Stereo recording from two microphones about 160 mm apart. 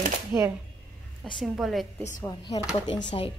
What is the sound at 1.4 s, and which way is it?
Speech, centre (ahead or behind).